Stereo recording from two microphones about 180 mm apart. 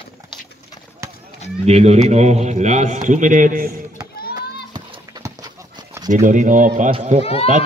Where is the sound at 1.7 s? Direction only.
35° right (ahead or behind).